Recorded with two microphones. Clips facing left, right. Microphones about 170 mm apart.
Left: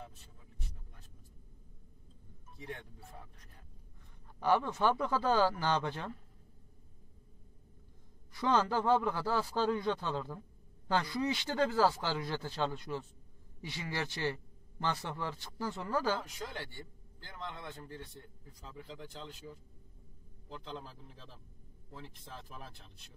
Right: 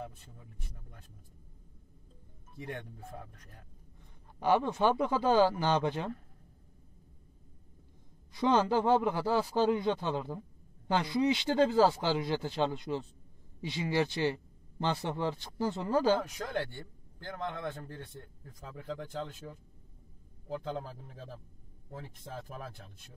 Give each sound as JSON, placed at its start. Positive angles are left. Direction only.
{"t": 2.6, "sound": "a man's voice", "side_deg": -50}
{"t": 4.4, "sound": "speech", "side_deg": -20}
{"t": 8.3, "sound": "speech", "side_deg": -20}
{"t": 16.2, "sound": "a man's voice", "side_deg": -50}